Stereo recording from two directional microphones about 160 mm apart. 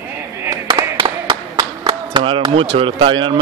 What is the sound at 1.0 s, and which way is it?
Clapping, 30° right (ahead or behind).